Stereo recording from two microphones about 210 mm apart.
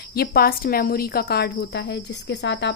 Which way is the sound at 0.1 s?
45° left (ahead or behind).